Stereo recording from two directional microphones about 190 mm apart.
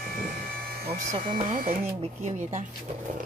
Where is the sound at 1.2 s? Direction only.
45° right (ahead or behind).